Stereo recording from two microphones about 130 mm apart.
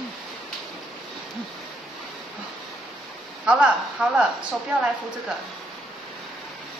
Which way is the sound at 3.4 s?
5° right (ahead or behind).